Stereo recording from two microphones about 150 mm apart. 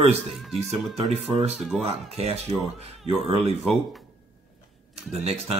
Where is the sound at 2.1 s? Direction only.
45° right (ahead or behind).